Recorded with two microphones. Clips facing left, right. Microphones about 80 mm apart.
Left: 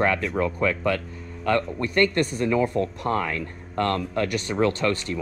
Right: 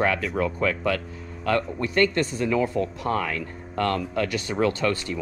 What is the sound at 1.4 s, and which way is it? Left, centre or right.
Speech, left.